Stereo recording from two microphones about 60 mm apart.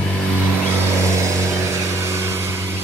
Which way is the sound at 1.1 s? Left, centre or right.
Right.